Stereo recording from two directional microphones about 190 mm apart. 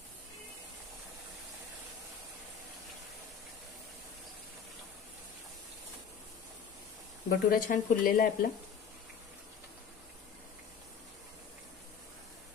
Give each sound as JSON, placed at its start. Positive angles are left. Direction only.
{"t": 7.2, "sound": "speech", "side_deg": 50}